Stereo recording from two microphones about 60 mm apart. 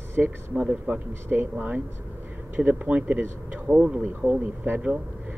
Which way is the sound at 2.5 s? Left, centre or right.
Right.